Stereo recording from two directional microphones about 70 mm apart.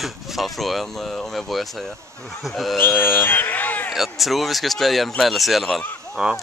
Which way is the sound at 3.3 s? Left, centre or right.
Left.